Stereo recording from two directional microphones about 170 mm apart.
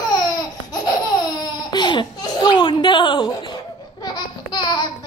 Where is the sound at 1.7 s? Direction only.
25° left (ahead or behind).